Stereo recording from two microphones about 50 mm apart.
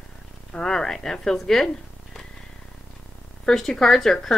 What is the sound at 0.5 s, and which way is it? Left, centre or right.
A woman's voice, centre.